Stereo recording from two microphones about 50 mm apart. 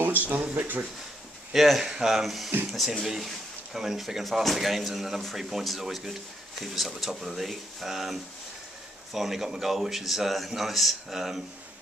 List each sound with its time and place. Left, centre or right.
0.0 s a sound: right
0.6 s speech: right
1.5 s speech: centre